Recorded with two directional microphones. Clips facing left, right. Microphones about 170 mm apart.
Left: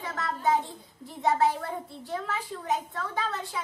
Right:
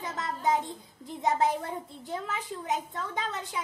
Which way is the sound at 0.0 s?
20° right (ahead or behind).